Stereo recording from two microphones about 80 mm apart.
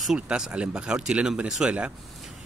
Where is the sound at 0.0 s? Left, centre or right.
Centre.